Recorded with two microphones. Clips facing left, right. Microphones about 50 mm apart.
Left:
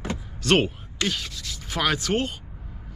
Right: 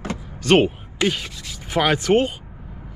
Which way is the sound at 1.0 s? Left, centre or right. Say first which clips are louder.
Right 6 dB; right.